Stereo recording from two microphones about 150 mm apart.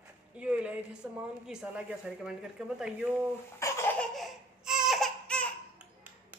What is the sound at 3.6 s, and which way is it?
Laughter, 20° left (ahead or behind).